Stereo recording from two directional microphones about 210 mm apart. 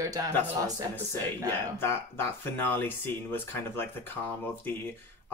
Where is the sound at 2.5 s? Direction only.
10° left (ahead or behind).